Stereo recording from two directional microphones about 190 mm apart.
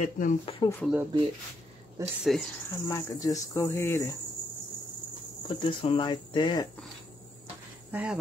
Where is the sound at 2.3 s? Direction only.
Centre (ahead or behind).